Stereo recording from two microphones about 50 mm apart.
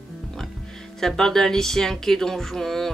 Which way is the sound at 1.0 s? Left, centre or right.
Centre.